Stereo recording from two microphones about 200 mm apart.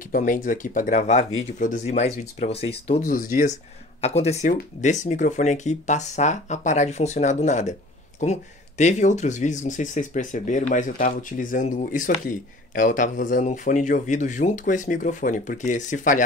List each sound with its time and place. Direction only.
0.1 s speech: 40° left (ahead or behind)
3.1 s speech: 40° left (ahead or behind)